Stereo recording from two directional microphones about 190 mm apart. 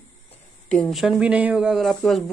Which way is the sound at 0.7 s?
Centre (ahead or behind).